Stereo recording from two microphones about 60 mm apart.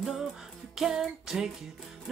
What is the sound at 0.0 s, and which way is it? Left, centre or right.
Music, centre.